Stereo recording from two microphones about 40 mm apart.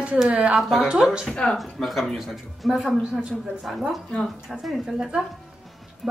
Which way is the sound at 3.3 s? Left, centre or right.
Centre.